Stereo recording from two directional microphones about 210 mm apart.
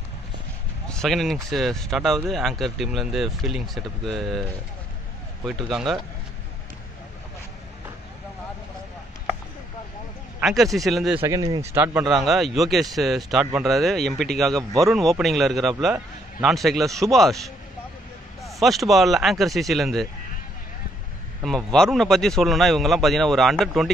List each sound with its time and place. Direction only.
0.8 s speech: centre (ahead or behind)
10.4 s speech: centre (ahead or behind)
11.1 s speech: 15° right (ahead or behind); by 17.4 s centre (ahead or behind)
18.4 s speech: centre (ahead or behind)
21.4 s speech: centre (ahead or behind)